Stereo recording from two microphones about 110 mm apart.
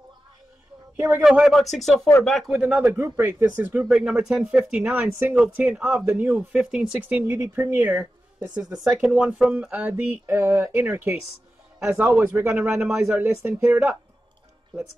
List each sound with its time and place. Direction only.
0.9 s a man's voice: 20° right (ahead or behind)
1.2 s speech: 5° right (ahead or behind)
2.8 s speech: 20° right (ahead or behind)
3.8 s a woman's voice: 5° right (ahead or behind)
7.2 s a woman's voice: 20° right (ahead or behind)
11.8 s speech: 5° right (ahead or behind)
12.2 s a woman's voice: 20° right (ahead or behind)